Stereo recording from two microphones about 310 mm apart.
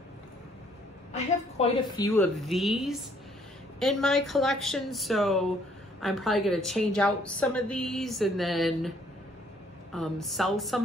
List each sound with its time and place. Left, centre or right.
1.6 s a woman's voice: centre
2.0 s a woman's voice: centre
9.9 s a woman's voice: centre